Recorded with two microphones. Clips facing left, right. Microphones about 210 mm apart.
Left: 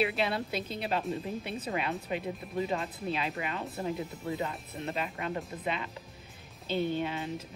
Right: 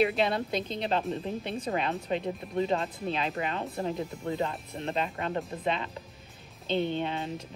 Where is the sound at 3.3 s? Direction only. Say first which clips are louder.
Right 3 dB; 35° right (ahead or behind).